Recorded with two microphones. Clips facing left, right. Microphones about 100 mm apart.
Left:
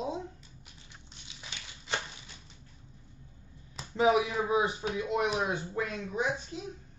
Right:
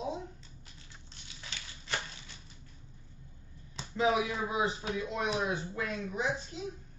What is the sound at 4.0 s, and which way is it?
Speech, 25° left (ahead or behind).